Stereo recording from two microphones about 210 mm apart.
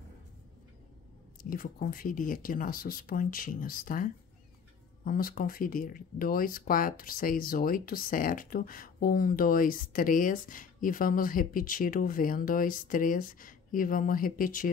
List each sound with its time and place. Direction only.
1.4 s speech: 40° left (ahead or behind)